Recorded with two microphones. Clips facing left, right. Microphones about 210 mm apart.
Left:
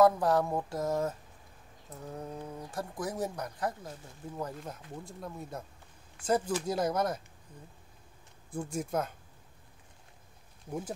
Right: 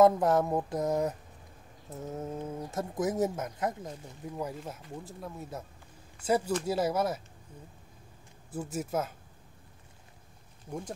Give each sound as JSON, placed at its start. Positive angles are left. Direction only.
{"t": 0.0, "sound": "speech", "side_deg": -20}
{"t": 4.4, "sound": "speech", "side_deg": -10}
{"t": 8.5, "sound": "speech", "side_deg": -5}